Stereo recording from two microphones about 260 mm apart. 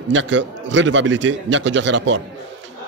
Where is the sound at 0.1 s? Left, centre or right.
Right.